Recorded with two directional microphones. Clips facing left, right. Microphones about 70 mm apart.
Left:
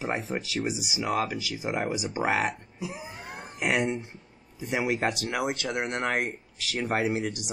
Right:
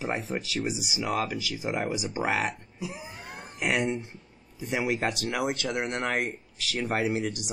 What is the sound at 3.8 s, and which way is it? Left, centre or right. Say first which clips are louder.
Speech: even; left.